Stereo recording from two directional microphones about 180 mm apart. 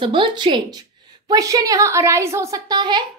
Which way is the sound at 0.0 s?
25° right (ahead or behind).